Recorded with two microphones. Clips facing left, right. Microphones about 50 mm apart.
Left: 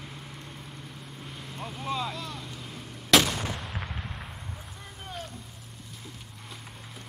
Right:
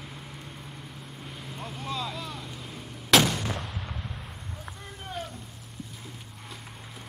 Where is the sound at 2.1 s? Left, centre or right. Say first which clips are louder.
Right 1 dB; centre.